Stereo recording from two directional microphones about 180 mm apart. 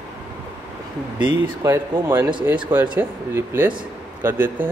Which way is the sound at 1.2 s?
20° right (ahead or behind).